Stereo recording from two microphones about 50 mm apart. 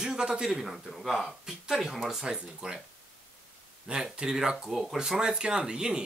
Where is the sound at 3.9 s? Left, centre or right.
Centre.